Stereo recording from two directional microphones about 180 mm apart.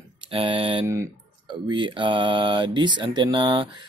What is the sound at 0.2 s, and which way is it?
Mantra, 30° right (ahead or behind).